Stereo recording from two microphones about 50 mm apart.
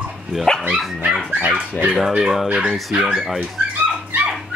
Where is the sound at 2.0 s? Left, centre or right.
Centre.